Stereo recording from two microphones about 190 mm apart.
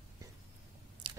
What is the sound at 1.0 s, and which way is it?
Chewing, 25° right (ahead or behind).